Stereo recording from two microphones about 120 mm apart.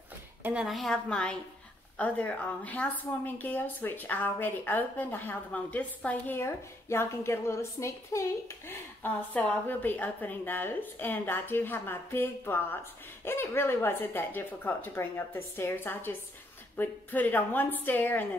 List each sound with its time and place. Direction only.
0.4 s a woman's voice: 10° right (ahead or behind)
0.7 s a woman's voice: centre (ahead or behind)